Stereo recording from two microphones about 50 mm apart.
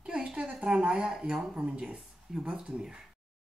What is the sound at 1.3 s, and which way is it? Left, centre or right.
Speech, centre.